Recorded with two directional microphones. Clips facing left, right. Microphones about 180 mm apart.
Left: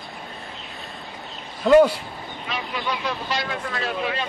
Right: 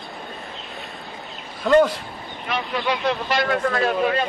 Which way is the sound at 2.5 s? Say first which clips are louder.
Right 5 dB; 60° right (ahead or behind).